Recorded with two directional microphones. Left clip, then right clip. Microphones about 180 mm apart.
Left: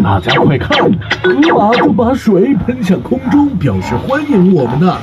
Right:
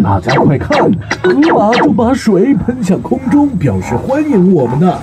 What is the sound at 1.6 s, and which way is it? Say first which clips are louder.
Speech: even; 50° right (ahead or behind).